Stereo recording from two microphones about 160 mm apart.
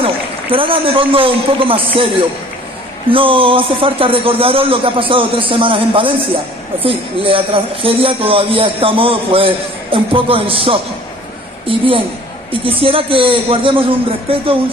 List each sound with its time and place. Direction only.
0.0 s a man's voice: 35° right (ahead or behind)